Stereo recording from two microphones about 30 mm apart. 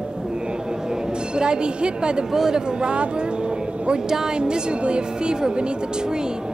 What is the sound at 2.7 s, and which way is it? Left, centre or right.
Speech, right.